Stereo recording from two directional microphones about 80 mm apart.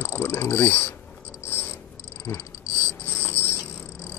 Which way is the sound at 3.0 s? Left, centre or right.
Left.